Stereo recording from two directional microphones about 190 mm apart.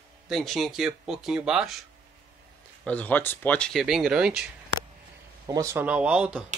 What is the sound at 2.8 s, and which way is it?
Speech, 5° left (ahead or behind).